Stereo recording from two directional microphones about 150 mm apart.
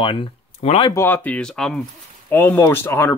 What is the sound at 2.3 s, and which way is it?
Speech, 15° left (ahead or behind).